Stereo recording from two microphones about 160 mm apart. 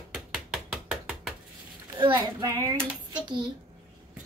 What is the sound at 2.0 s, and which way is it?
Speech, 30° right (ahead or behind).